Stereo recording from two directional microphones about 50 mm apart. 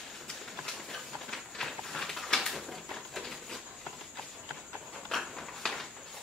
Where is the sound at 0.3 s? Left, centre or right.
Centre.